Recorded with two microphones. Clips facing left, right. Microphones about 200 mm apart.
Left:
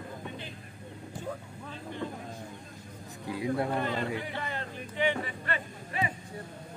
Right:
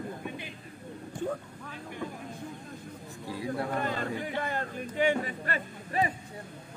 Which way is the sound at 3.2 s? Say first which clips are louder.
Left 3 dB; 20° left (ahead or behind).